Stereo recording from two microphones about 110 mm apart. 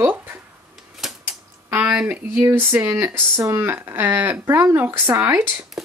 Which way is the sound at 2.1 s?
15° right (ahead or behind).